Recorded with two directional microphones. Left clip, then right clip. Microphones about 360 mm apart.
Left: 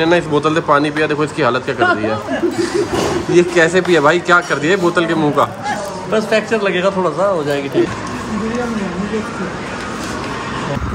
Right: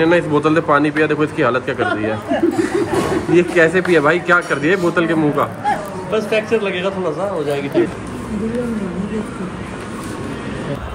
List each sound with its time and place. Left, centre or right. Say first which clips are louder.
0.0 s a man's voice: even; centre
1.8 s speech: left 4 dB; left
3.3 s speech: left 1 dB; centre
6.1 s speech: left 2 dB; left